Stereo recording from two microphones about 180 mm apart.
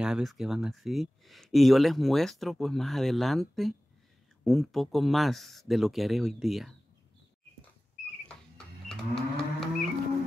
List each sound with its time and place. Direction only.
0.0 s speech: centre (ahead or behind)
8.3 s livestock: 5° left (ahead or behind)